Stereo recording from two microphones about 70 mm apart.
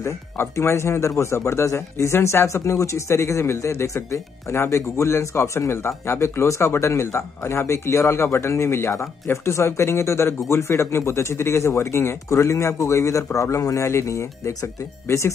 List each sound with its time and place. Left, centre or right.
0.0 s speech: left